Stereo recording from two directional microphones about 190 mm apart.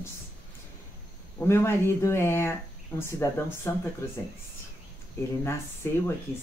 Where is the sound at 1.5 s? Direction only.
15° left (ahead or behind).